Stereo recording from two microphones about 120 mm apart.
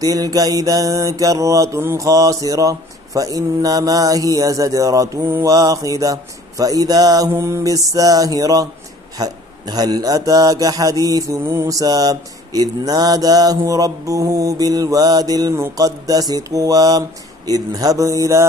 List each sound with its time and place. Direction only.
0.0 s mantra: 30° right (ahead or behind)
9.2 s speech: 35° right (ahead or behind)
17.5 s mantra: 30° right (ahead or behind)